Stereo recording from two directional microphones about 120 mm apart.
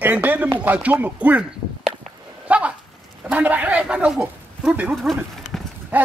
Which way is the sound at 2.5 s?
10° right (ahead or behind).